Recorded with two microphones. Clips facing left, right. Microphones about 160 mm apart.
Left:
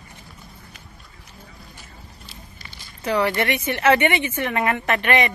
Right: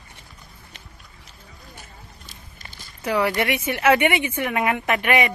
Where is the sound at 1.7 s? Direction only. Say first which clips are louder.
Even; 45° right (ahead or behind).